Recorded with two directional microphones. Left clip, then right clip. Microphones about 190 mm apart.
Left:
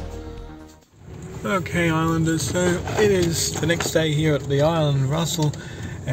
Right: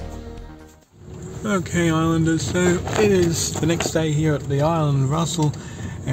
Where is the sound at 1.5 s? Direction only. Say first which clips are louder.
Even; 10° right (ahead or behind).